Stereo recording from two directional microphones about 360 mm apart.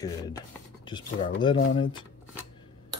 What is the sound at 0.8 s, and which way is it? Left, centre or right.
Speech, centre.